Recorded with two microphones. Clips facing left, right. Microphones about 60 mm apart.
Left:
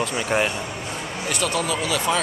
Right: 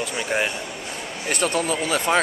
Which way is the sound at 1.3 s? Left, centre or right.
Right.